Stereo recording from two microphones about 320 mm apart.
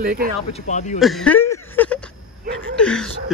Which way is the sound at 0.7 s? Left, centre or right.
Left.